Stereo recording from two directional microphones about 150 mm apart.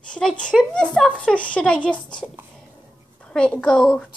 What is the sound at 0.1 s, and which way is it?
Speech, 5° left (ahead or behind).